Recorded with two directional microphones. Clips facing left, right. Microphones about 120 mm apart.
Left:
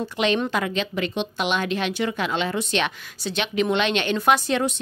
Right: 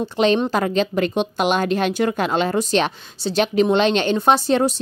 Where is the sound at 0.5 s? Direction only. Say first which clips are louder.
Right 6 dB; 40° right (ahead or behind).